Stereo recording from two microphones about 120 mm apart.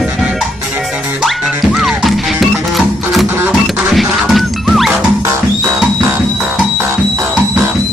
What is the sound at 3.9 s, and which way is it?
Music, centre (ahead or behind).